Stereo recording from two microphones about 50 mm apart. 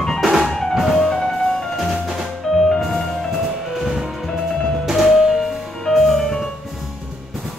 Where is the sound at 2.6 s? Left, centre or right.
Centre.